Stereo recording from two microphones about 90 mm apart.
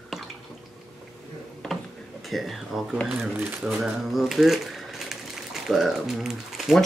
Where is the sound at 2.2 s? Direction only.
Centre (ahead or behind).